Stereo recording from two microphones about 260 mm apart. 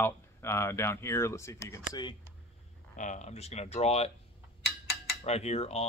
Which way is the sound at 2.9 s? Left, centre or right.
Left.